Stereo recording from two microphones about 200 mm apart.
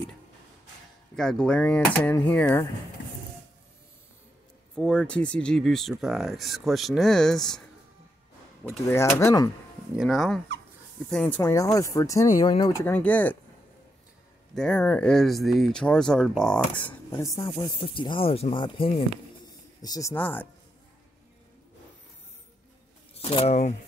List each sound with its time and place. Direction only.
1.1 s speech: 5° left (ahead or behind)
4.7 s speech: 5° left (ahead or behind)
8.8 s speech: 15° left (ahead or behind)
9.9 s speech: centre (ahead or behind)
14.5 s speech: 5° left (ahead or behind)
23.1 s speech: 30° left (ahead or behind)